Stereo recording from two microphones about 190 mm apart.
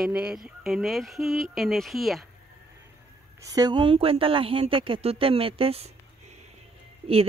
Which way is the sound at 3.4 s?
20° right (ahead or behind).